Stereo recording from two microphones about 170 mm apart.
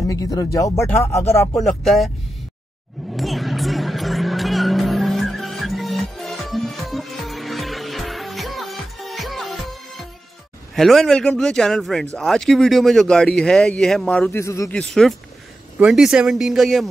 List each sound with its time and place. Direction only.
0.1 s speech: 20° left (ahead or behind)
1.6 s speech: centre (ahead or behind)
3.2 s music: centre (ahead or behind)
10.7 s speech: centre (ahead or behind); by 14.7 s 15° left (ahead or behind)
14.7 s speech: 5° left (ahead or behind)